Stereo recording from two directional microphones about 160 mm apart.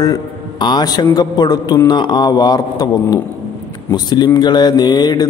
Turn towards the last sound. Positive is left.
turn(degrees=25)  # may be behind; listen again after turning